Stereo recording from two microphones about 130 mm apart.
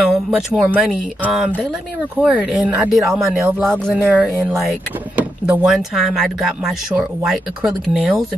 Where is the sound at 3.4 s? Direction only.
15° right (ahead or behind).